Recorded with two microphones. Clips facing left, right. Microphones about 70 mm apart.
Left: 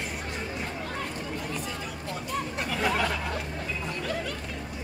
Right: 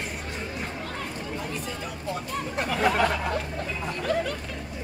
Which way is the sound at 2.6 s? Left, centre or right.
Right.